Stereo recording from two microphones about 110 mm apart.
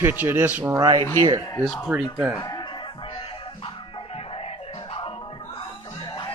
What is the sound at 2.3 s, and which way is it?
Music, 35° left (ahead or behind).